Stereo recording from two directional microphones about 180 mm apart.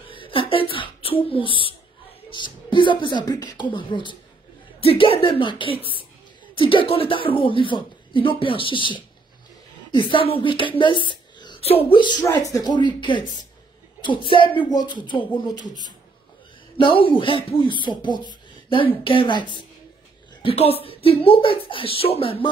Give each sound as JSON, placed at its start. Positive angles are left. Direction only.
{"t": 0.1, "sound": "a child's voice", "side_deg": 30}
{"t": 16.7, "sound": "speech", "side_deg": 30}